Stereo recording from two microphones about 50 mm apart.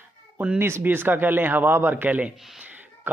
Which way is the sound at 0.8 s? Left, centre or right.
Right.